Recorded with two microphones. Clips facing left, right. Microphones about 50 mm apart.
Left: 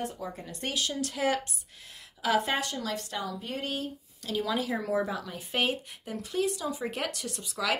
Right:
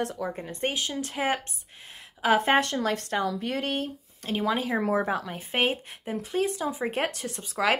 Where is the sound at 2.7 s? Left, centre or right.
Right.